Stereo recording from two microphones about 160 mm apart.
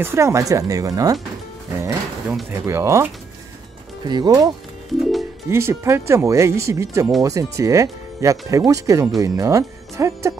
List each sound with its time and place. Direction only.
0.0 s speech: 15° right (ahead or behind)
2.5 s speech: 15° right (ahead or behind)
4.9 s speech: centre (ahead or behind)
5.5 s speech: 15° right (ahead or behind)